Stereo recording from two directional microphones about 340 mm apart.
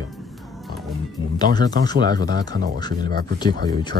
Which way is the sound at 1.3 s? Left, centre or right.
Centre.